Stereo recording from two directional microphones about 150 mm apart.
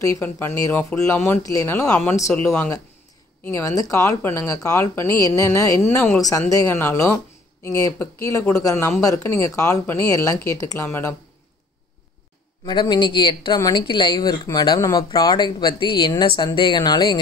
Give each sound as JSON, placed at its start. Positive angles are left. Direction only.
{"t": 0.0, "sound": "speech", "side_deg": 20}
{"t": 12.6, "sound": "speech", "side_deg": 30}